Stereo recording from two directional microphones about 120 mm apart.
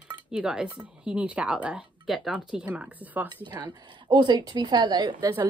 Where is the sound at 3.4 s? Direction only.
40° right (ahead or behind).